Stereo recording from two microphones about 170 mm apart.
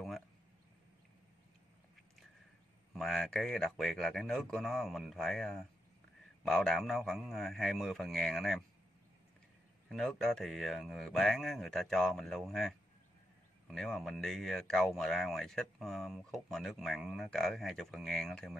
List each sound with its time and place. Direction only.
2.9 s speech: centre (ahead or behind)
9.8 s speech: centre (ahead or behind)